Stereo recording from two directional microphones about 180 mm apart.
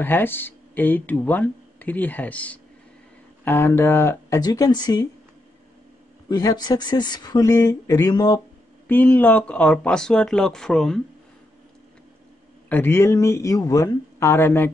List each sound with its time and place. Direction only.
0.0 s speech: 10° left (ahead or behind)
6.2 s speech: 20° left (ahead or behind)
8.8 s speech: 10° left (ahead or behind)
12.6 s speech: 10° left (ahead or behind)